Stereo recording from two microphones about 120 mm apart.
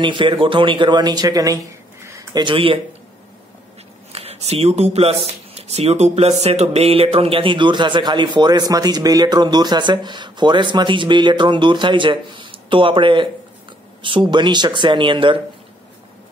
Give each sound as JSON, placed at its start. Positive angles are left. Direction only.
{"t": 0.0, "sound": "speech", "side_deg": -45}
{"t": 2.3, "sound": "speech", "side_deg": -45}
{"t": 4.1, "sound": "speech", "side_deg": -60}